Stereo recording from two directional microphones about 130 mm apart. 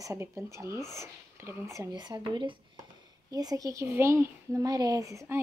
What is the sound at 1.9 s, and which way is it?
A child's voice, 35° right (ahead or behind).